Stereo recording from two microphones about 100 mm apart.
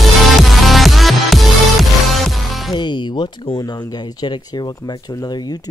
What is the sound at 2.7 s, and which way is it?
Music, 50° left (ahead or behind).